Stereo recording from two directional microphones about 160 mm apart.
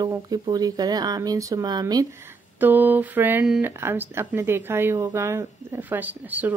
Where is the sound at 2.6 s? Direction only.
10° right (ahead or behind).